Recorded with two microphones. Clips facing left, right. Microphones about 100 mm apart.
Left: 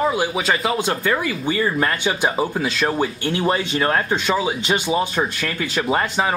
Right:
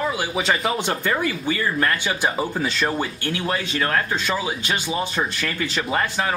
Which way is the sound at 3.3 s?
25° left (ahead or behind).